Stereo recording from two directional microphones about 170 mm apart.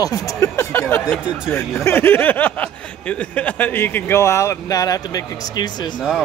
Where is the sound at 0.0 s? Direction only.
20° left (ahead or behind).